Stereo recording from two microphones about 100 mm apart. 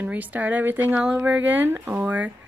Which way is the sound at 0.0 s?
15° right (ahead or behind).